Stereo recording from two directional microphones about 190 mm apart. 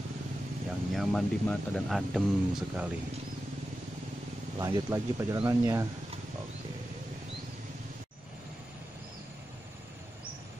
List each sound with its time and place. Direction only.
0.9 s speech: centre (ahead or behind)
4.6 s speech: 20° right (ahead or behind)